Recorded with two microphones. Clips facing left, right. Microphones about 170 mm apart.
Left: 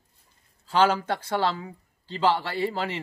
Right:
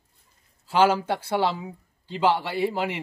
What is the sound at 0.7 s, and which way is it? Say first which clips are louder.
Speech: right 2 dB; 10° right (ahead or behind).